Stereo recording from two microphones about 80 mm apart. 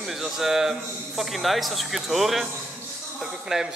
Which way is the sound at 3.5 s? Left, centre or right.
Centre.